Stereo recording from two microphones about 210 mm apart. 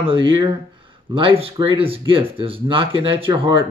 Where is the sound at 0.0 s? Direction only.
25° right (ahead or behind).